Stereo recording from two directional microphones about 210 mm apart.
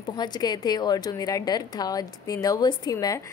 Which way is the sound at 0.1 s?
20° left (ahead or behind).